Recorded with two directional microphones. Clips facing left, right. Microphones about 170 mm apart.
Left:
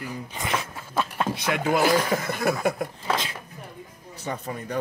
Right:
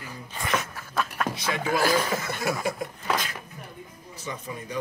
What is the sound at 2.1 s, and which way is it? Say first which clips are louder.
Speech: left 4 dB; 60° left (ahead or behind).